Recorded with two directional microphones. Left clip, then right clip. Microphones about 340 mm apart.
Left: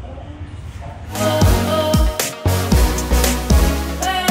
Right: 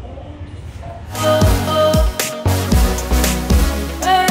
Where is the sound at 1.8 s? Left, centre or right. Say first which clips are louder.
Right 3 dB; centre.